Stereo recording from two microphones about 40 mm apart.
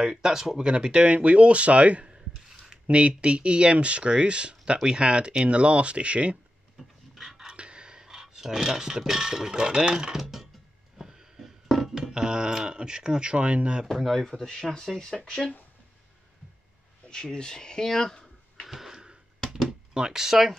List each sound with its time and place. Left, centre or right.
0.0 s speech: centre; by 2.1 s right
2.5 s a sound: centre
2.9 s speech: right
7.2 s pant: centre
7.4 s speech: right
11.0 s a sound: centre
12.0 s speech: centre
13.9 s speech: centre
14.2 s speech: centre
17.1 s speech: centre
18.7 s a sound: centre
19.9 s speech: centre